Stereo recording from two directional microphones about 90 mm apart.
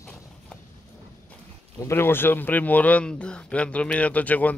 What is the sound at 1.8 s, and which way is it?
Speech, 30° left (ahead or behind).